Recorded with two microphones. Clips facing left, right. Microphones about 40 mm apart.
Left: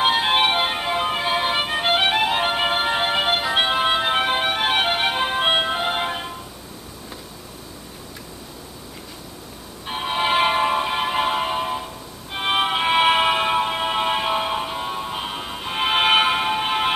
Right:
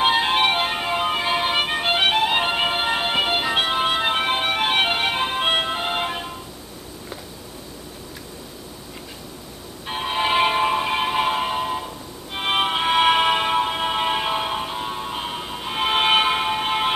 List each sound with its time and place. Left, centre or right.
0.0 s music: centre
3.5 s music: centre
9.8 s music: centre